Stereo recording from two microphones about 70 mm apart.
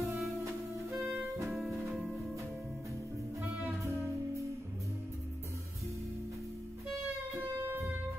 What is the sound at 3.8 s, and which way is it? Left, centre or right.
Music, right.